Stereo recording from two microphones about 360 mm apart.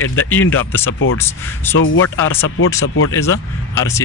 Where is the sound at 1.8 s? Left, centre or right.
Left.